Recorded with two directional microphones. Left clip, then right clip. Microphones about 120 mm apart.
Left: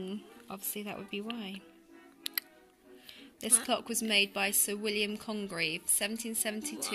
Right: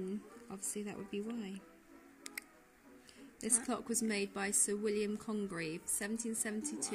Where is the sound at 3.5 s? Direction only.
5° left (ahead or behind).